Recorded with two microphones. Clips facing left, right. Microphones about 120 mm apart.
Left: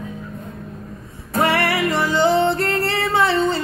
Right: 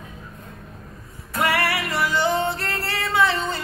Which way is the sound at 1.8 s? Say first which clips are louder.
Left 5 dB; 20° left (ahead or behind).